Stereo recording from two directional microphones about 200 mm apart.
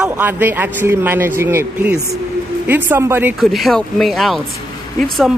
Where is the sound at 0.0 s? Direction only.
10° right (ahead or behind).